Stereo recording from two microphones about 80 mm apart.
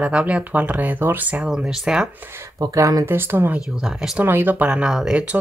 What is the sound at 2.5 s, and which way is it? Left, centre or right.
Speech, right.